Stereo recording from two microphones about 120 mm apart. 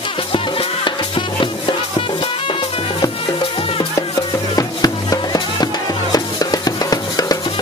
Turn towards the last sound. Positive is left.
turn(degrees=30)  # may be behind; listen again after turning